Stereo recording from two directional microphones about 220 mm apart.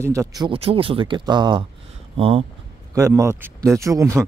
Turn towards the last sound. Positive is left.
turn(degrees=-15)  # may be behind; listen again after turning